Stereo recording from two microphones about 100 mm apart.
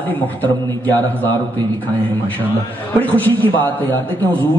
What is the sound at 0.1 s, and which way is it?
A man's voice, 20° left (ahead or behind).